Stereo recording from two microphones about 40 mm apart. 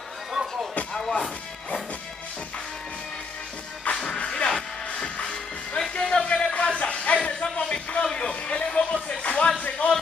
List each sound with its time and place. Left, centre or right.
0.3 s music: centre
1.1 s music: left
3.9 s music: left
5.8 s music: centre
6.6 s a sound: left
7.5 s music: left
9.6 s speech: left